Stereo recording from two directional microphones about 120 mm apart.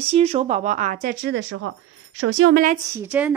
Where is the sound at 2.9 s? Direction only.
15° right (ahead or behind).